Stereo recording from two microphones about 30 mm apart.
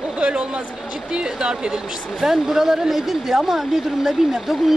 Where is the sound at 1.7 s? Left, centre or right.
Centre.